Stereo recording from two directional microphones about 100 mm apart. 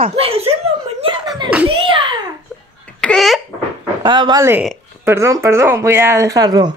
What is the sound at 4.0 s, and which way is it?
Speech, 50° right (ahead or behind).